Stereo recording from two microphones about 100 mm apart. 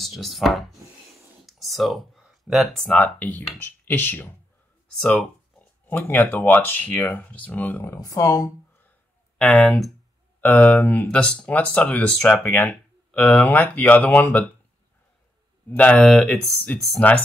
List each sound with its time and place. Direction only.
0.0 s a sound: centre (ahead or behind)
2.9 s speech: 15° left (ahead or behind)
5.0 s speech: 5° left (ahead or behind)
5.9 s speech: 20° left (ahead or behind)
8.0 s speech: 35° left (ahead or behind)
9.4 s speech: 10° left (ahead or behind)
15.7 s speech: 10° left (ahead or behind)